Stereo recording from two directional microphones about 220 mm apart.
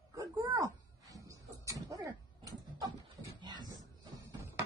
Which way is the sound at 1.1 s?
15° right (ahead or behind).